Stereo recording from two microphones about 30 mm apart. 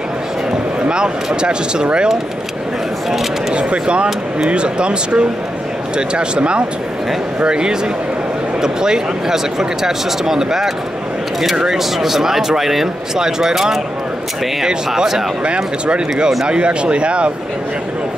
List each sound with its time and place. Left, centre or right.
0.5 s speech: right
3.5 s speech: right
12.0 s speech: centre
13.2 s speech: centre
15.4 s speech: right